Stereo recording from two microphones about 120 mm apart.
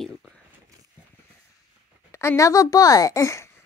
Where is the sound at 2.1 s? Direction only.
25° left (ahead or behind).